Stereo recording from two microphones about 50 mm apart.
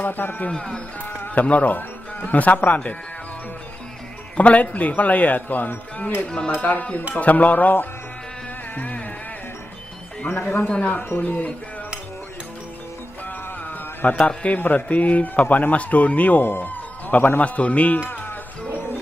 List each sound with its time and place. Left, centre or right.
0.0 s speech: left
4.4 s speech: left
6.2 s speech: centre; by 7.9 s left
8.7 s music: left
10.2 s speech: left
13.7 s speech: left
16.4 s a sound: left
17.4 s speech: left